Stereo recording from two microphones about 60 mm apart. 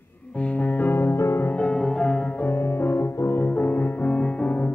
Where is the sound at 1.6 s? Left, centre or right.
Centre.